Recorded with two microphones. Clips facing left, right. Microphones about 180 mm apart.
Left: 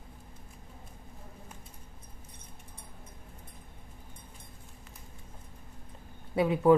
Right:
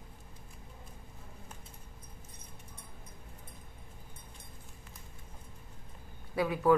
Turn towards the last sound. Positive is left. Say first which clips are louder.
# left 4 dB
turn(degrees=25)  # may be behind; listen again after turning